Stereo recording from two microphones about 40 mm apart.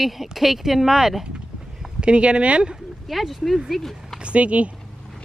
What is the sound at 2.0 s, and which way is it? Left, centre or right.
Speech, right.